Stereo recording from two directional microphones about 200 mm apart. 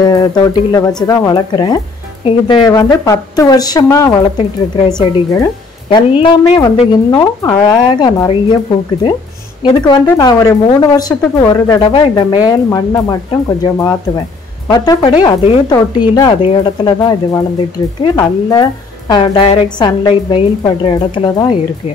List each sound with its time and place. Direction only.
0.0 s speech: 20° left (ahead or behind)
5.3 s speech: 20° left (ahead or behind)
9.6 s speech: 20° left (ahead or behind)